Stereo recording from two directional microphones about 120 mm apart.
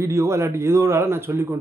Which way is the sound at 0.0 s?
25° right (ahead or behind).